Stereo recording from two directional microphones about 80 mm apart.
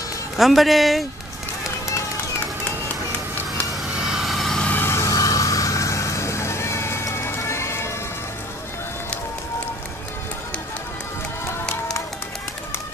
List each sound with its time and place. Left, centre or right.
0.4 s speech: centre
3.7 s vehicle: centre
4.6 s emergency vehicle: left
4.9 s horse: left
7.2 s a sound: left